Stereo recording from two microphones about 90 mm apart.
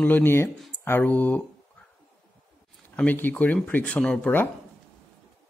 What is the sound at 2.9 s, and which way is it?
Speech, 20° left (ahead or behind).